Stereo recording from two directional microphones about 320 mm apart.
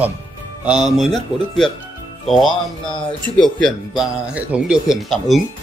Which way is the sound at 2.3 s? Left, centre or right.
Centre.